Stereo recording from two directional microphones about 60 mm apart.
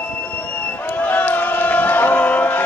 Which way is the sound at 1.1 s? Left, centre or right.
Left.